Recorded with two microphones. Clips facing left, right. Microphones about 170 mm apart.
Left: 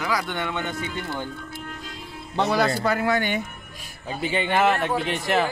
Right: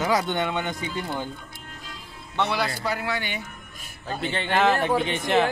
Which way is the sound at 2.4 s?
45° left (ahead or behind).